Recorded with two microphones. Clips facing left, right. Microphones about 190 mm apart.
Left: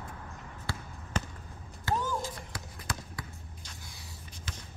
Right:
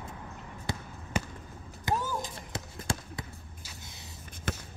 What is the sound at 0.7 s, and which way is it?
Basketball bounce, 20° right (ahead or behind).